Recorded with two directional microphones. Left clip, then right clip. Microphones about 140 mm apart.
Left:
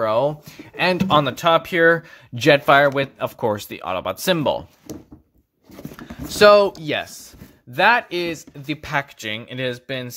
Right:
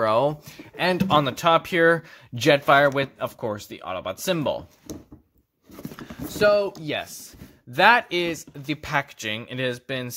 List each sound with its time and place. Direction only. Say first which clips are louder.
0.0 s speech: left 2 dB; 5° right (ahead or behind); by 4.6 s 15° left (ahead or behind)
6.4 s speech: left 8 dB; 35° left (ahead or behind)
6.8 s speech: left 5 dB; 10° left (ahead or behind)
7.7 s speech: left 1 dB; 5° right (ahead or behind)